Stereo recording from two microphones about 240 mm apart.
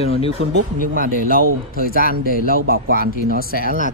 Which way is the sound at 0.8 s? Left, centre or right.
Right.